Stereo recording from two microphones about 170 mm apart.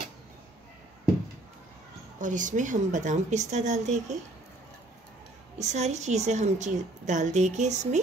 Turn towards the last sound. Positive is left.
turn(degrees=-45)  # may be behind; listen again after turning